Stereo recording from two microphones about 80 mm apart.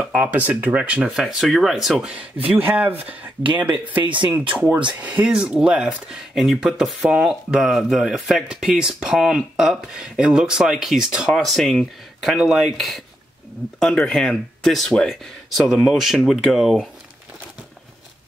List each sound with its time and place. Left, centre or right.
0.0 s speech: centre
1.1 s speech: centre
15.6 s speech: centre
15.9 s speech: centre